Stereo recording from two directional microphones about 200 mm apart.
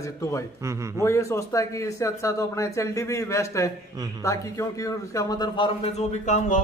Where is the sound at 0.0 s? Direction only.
15° left (ahead or behind).